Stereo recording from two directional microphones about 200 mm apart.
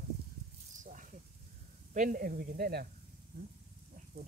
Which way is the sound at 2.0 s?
45° right (ahead or behind).